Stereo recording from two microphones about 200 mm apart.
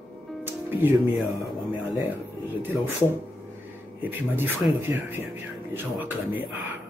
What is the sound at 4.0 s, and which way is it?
Speech, 10° right (ahead or behind).